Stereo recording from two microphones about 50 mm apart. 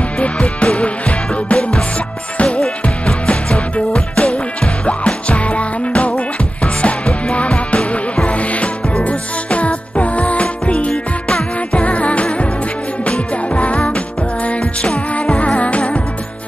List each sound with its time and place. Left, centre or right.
0.2 s music: left
10.9 s music: centre
11.8 s music: left
13.6 s music: left
14.6 s music: centre
15.3 s music: left